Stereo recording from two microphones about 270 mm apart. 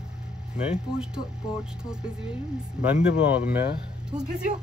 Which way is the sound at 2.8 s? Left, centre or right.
Centre.